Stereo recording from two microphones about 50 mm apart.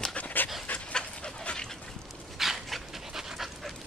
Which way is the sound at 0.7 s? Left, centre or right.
Left.